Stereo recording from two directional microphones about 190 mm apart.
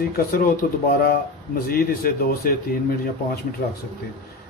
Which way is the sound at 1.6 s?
50° left (ahead or behind).